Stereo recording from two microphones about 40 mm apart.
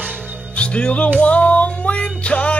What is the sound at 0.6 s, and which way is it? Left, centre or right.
Music, left.